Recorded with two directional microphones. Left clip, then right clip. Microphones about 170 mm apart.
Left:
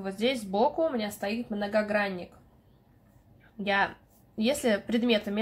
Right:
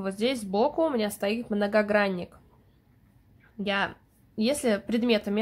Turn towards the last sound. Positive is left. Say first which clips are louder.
# right 1 dB
turn(degrees=-25)  # may be behind; listen again after turning